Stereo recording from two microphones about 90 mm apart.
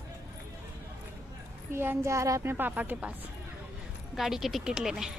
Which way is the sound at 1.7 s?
25° right (ahead or behind).